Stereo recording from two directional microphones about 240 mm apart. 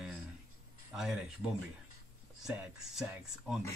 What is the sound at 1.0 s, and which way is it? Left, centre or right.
Speech, centre.